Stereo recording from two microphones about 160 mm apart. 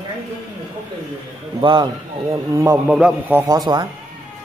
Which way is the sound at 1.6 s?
30° right (ahead or behind).